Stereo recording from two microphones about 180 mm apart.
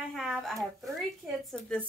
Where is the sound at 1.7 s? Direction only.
5° left (ahead or behind).